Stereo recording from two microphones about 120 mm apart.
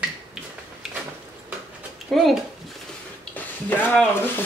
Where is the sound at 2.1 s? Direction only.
Centre (ahead or behind).